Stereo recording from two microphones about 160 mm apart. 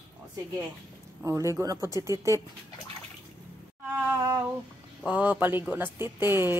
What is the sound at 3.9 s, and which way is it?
Speech, 15° right (ahead or behind).